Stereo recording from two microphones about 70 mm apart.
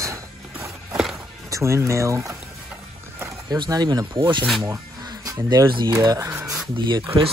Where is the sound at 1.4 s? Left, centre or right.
Right.